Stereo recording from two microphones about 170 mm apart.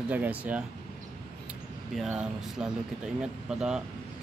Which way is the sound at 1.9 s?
5° right (ahead or behind).